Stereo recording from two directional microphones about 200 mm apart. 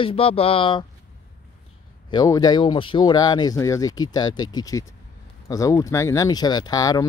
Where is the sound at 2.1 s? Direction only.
20° left (ahead or behind).